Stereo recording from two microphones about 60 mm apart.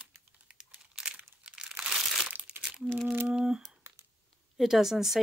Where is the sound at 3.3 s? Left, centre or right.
Centre.